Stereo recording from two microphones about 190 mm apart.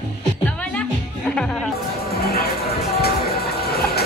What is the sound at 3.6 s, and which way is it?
Music, 55° left (ahead or behind).